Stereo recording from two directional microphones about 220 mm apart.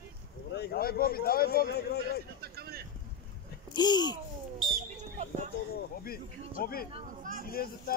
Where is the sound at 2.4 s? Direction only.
45° right (ahead or behind).